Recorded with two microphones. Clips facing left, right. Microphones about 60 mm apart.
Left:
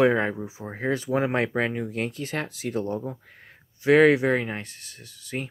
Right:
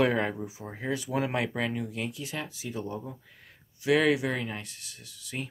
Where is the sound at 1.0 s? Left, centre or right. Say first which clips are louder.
Left 5 dB; left.